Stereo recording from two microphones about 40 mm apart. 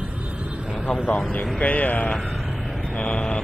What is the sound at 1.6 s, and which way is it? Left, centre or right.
Speech, left.